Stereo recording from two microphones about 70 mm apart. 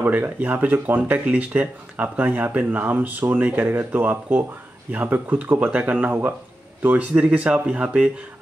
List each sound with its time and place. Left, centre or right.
0.0 s speech: right